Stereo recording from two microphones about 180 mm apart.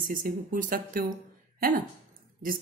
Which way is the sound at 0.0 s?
50° right (ahead or behind).